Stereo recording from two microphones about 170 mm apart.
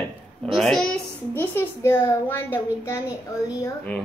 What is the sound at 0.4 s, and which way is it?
A child's voice, centre (ahead or behind).